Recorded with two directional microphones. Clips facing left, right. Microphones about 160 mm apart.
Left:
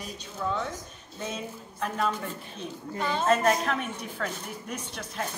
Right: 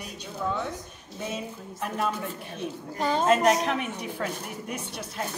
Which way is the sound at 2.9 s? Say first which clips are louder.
Right 3 dB; 35° right (ahead or behind).